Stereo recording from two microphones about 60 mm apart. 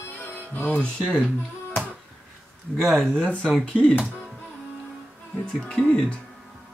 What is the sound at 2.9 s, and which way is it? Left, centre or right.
Speech, centre.